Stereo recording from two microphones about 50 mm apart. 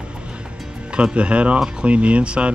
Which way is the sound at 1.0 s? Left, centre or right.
Right.